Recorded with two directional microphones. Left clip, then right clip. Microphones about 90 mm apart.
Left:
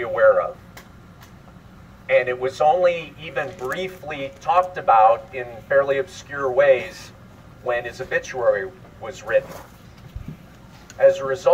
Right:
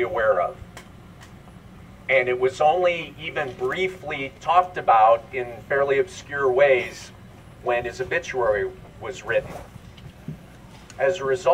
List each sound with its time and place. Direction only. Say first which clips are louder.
0.0 s a man's voice: left 4 dB; 20° right (ahead or behind)
2.0 s a man's voice: left 1 dB; 20° right (ahead or behind)
11.5 s a man's voice: left 4 dB; 30° right (ahead or behind)